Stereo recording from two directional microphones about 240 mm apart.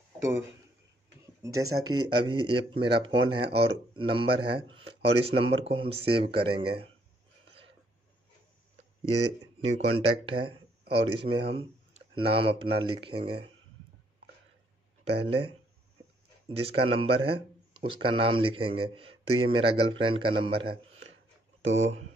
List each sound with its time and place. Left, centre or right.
1.2 s speech: centre
9.6 s speech: right
15.0 s speech: right
21.7 s speech: right